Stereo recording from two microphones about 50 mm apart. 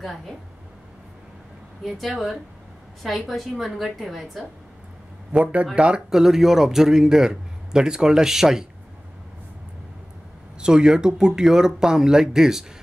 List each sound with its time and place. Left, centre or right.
0.0 s a woman's voice: centre
1.8 s a woman's voice: centre
5.4 s speech: right
5.8 s speech: centre
10.6 s speech: centre